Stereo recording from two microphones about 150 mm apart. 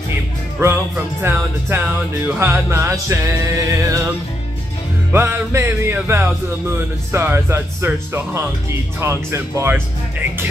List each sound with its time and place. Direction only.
0.6 s music: 15° right (ahead or behind)
5.1 s music: 15° right (ahead or behind)